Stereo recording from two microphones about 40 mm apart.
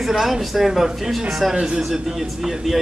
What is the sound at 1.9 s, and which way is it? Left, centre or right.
Speech, centre.